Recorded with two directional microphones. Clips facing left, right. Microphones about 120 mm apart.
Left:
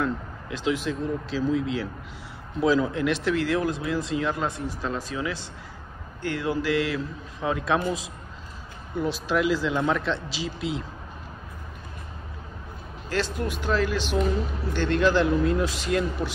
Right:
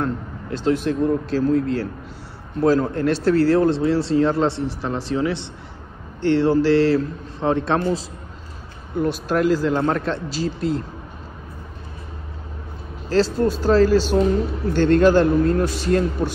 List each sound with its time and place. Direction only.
0.0 s speech: 40° right (ahead or behind)
8.9 s speech: 50° right (ahead or behind)
13.1 s speech: 35° right (ahead or behind)